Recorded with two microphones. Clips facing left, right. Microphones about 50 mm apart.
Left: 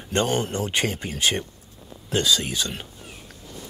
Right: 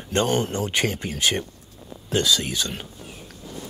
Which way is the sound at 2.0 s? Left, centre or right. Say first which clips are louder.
Right 1 dB; left.